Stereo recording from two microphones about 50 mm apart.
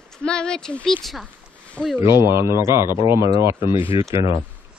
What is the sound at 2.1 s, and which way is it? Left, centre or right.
A man's voice, right.